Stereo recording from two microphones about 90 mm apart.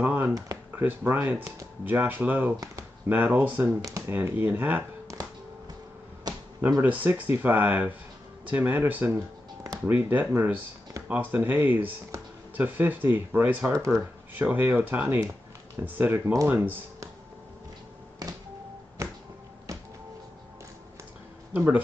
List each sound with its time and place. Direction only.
0.0 s a sound: 20° right (ahead or behind)
0.7 s speech: 25° right (ahead or behind)
2.5 s speech: 40° right (ahead or behind)
3.1 s speech: 20° right (ahead or behind)
6.8 s speech: 20° right (ahead or behind)
12.1 s a sound: 35° right (ahead or behind)
12.5 s speech: 20° right (ahead or behind)
13.7 s speech: 35° right (ahead or behind)
14.5 s speech: 20° right (ahead or behind)
18.2 s music: 45° right (ahead or behind)
19.0 s a sound: 35° right (ahead or behind)
21.5 s speech: 20° right (ahead or behind)